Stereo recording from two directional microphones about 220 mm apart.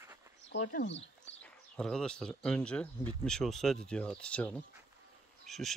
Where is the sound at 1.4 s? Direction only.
5° left (ahead or behind).